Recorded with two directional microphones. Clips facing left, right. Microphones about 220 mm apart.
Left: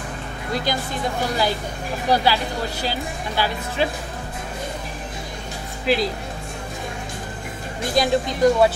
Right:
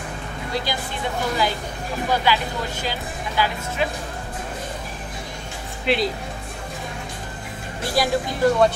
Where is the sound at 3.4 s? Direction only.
35° left (ahead or behind).